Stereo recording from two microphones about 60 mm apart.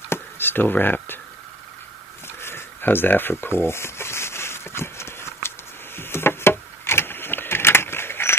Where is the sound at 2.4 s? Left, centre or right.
Left.